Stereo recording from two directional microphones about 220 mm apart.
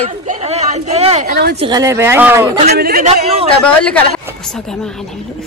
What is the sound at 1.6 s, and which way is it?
Speech, 15° right (ahead or behind).